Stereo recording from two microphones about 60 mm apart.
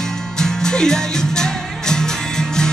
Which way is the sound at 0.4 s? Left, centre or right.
Centre.